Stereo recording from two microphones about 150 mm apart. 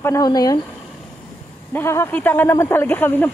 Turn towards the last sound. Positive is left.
turn(degrees=15)  # may be behind; listen again after turning